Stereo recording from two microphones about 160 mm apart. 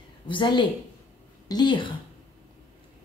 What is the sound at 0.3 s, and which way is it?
Speech, 30° left (ahead or behind).